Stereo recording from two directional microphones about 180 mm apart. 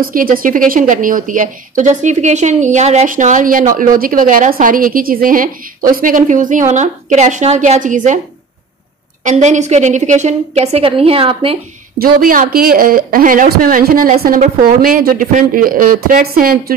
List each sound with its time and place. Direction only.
0.0 s a woman's voice: 50° right (ahead or behind)
9.2 s a woman's voice: 40° right (ahead or behind)
12.0 s a woman's voice: 55° right (ahead or behind)